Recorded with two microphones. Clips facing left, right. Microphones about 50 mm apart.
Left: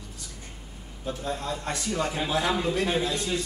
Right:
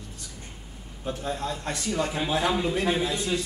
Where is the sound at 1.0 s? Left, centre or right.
Right.